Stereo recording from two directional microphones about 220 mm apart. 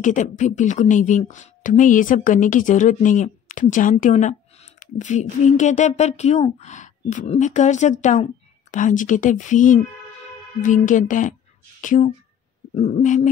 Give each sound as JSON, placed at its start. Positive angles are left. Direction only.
{"t": 0.0, "sound": "speech", "side_deg": 35}